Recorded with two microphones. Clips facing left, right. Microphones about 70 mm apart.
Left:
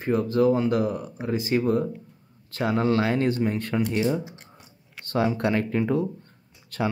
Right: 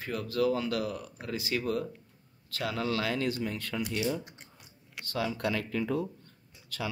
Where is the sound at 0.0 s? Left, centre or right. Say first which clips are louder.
Left 8 dB; left.